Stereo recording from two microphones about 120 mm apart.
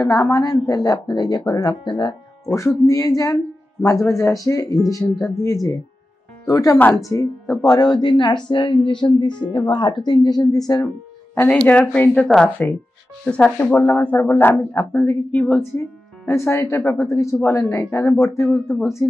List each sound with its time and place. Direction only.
0.0 s speech: 30° left (ahead or behind)
2.5 s speech: 25° left (ahead or behind)
5.1 s speech: centre (ahead or behind)
5.4 s speech: 25° left (ahead or behind)
11.3 s speech: 15° left (ahead or behind)